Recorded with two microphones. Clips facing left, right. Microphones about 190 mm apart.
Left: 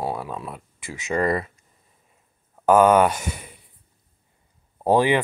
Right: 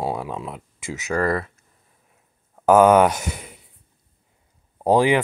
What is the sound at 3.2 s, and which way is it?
Speech, 90° right.